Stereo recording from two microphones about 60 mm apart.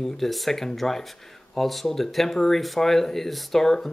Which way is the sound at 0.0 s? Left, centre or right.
Centre.